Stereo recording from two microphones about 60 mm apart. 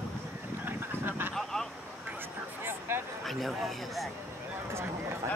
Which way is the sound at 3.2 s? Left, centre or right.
Centre.